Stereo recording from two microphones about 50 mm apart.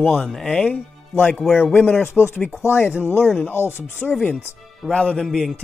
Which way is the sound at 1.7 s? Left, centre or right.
Left.